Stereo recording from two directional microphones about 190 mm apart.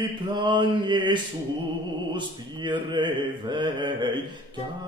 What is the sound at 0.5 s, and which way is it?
Mantra, 25° right (ahead or behind).